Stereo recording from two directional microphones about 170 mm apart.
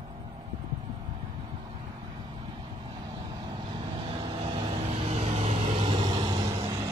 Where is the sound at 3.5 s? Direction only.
25° right (ahead or behind).